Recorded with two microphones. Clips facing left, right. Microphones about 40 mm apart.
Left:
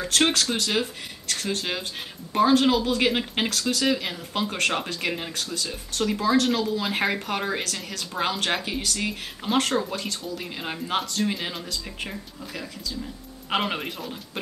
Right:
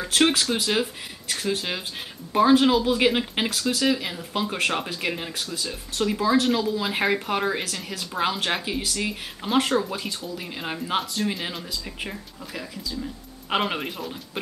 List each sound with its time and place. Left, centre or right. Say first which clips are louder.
0.0 s speech: right 1 dB; centre